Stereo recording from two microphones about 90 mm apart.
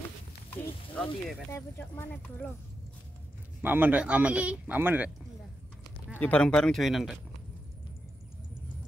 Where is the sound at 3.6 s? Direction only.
20° right (ahead or behind).